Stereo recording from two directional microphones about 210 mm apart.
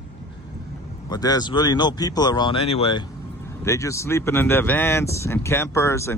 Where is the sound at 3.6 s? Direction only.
15° left (ahead or behind).